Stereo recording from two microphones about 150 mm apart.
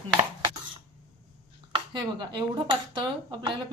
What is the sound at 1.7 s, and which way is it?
Speech, 30° right (ahead or behind).